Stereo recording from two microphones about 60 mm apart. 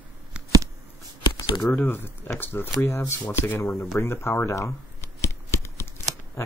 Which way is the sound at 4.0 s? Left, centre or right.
Left.